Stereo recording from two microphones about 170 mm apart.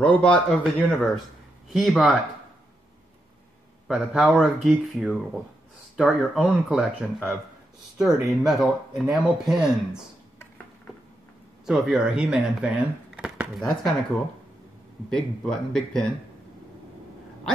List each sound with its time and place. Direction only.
0.0 s speech: 5° left (ahead or behind)
3.8 s speech: centre (ahead or behind)
11.6 s speech: centre (ahead or behind)
15.0 s speech: 5° left (ahead or behind)